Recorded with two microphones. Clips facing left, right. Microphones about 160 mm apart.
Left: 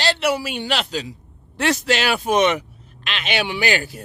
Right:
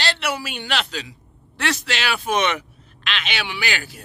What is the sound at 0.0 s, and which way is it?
A man's voice, 35° left (ahead or behind).